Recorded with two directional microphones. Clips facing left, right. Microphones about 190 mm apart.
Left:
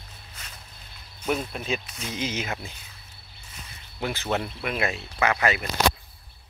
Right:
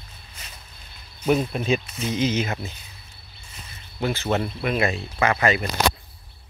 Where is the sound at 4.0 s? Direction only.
10° left (ahead or behind).